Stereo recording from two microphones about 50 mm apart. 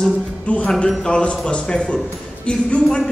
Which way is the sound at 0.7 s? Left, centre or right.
Centre.